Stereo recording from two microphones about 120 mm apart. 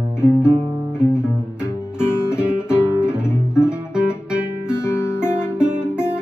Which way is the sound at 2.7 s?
10° right (ahead or behind).